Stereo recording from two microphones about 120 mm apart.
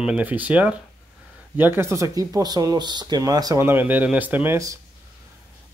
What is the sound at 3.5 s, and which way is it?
Speech, 20° right (ahead or behind).